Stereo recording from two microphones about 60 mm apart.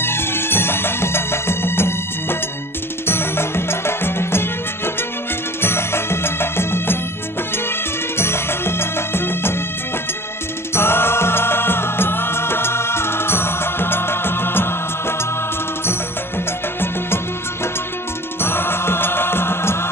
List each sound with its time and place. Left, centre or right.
0.0 s music: left
8.2 s music: left
10.7 s music: left
18.4 s music: left